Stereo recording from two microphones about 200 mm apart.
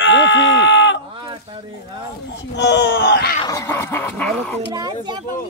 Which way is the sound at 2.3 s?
60° left (ahead or behind).